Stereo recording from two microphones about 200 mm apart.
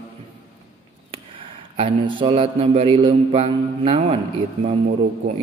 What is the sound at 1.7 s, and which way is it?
A man's voice, 25° right (ahead or behind).